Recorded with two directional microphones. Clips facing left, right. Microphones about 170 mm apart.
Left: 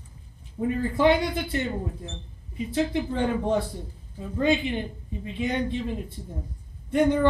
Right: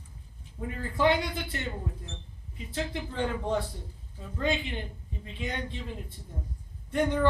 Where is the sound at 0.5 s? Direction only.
15° left (ahead or behind).